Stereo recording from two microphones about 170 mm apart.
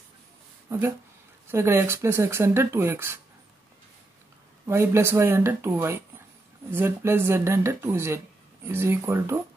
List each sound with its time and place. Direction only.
0.7 s speech: 15° right (ahead or behind)
4.6 s speech: 15° right (ahead or behind)